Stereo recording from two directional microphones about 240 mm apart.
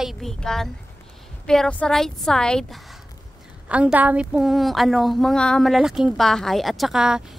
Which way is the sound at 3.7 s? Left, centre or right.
Centre.